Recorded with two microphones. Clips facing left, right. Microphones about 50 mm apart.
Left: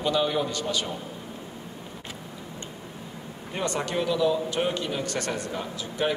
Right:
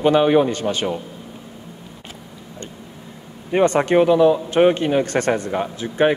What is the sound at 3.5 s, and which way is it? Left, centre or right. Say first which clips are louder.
A man's voice: right 13 dB; right.